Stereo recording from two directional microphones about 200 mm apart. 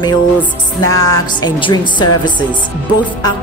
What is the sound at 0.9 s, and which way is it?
Speech, 20° left (ahead or behind).